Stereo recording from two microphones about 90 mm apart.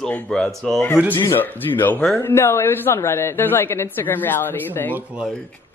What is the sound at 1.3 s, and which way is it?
A woman's voice, 20° left (ahead or behind).